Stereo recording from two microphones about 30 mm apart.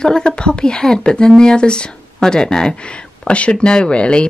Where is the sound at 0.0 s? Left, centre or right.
Left.